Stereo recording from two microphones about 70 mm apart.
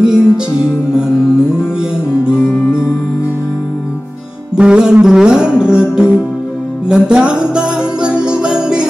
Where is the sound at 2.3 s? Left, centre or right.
Left.